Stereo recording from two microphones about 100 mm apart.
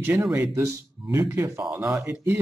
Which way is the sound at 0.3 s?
20° right (ahead or behind).